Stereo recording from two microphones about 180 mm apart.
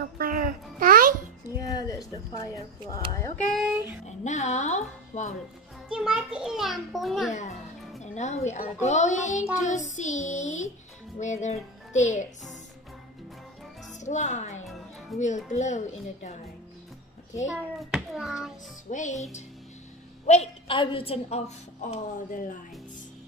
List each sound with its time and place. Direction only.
0.2 s music: 55° right (ahead or behind)
1.6 s speech: 20° left (ahead or behind)
3.4 s a child's voice: centre (ahead or behind)
4.0 s a woman's voice: 40° left (ahead or behind)
5.9 s a child's voice: 5° right (ahead or behind)
8.0 s a woman's voice: 40° left (ahead or behind)
13.9 s a woman's voice: 40° left (ahead or behind)
17.5 s a child's voice: 5° right (ahead or behind)
18.9 s speech: 45° left (ahead or behind)
20.2 s a woman's voice: 35° left (ahead or behind)